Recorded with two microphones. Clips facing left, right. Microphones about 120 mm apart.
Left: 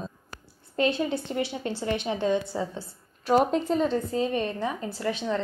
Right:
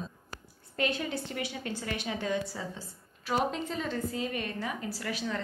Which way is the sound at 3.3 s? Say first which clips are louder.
Left 8 dB; 40° left (ahead or behind).